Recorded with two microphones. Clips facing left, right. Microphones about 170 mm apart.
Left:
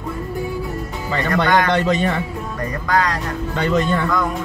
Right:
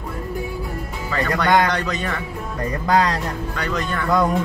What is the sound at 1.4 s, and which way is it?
Speech, 25° left (ahead or behind).